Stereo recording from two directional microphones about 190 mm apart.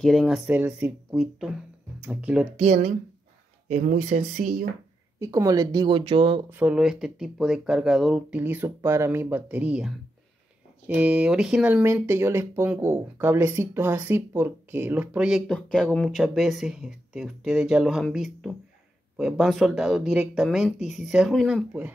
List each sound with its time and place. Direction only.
0.0 s speech: centre (ahead or behind)
2.5 s speech: 35° right (ahead or behind)
5.2 s speech: 15° right (ahead or behind)
6.5 s speech: 5° right (ahead or behind)